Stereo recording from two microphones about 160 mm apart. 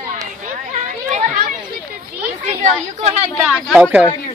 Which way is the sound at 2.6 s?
45° right (ahead or behind).